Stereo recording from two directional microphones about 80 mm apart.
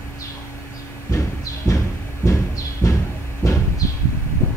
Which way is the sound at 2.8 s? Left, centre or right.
Left.